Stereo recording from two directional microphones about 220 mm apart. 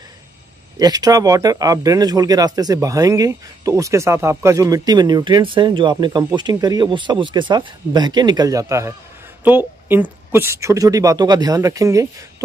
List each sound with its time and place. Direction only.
0.7 s speech: 15° right (ahead or behind)